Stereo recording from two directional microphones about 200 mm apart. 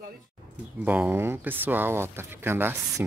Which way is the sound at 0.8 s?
10° right (ahead or behind).